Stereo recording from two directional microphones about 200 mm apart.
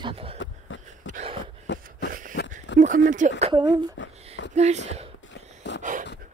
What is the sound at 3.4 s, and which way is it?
Speech, 25° right (ahead or behind).